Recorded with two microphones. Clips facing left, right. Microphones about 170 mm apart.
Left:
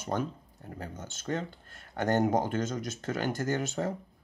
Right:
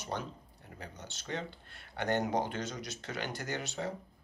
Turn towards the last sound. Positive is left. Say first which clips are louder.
# left 7 dB
turn(degrees=50)  # may be behind; listen again after turning